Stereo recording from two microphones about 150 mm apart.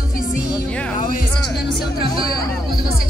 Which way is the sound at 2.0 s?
40° right (ahead or behind).